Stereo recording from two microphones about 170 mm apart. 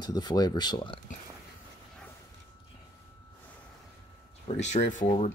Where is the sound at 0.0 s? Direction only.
25° left (ahead or behind).